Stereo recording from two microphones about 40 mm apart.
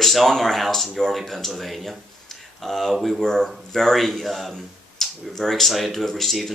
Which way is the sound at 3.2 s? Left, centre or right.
Centre.